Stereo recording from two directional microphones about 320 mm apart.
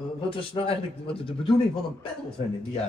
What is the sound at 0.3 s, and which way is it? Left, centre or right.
Speech, centre.